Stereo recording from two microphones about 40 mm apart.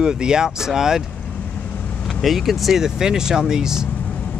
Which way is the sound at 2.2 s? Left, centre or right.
Centre.